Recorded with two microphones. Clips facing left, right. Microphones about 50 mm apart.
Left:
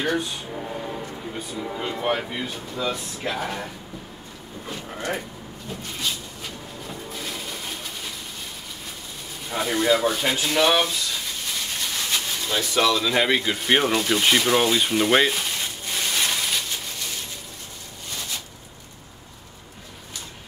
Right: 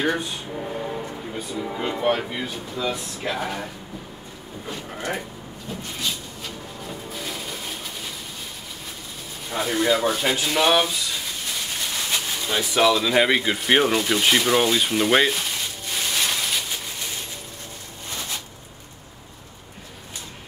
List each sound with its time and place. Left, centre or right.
0.0 s speech: centre
0.5 s train: centre
1.1 s speech: centre
5.7 s a sound: centre
9.5 s speech: centre
12.1 s speech: centre
15.9 s a sound: centre